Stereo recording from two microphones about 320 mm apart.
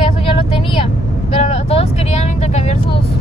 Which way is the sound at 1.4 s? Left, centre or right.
Centre.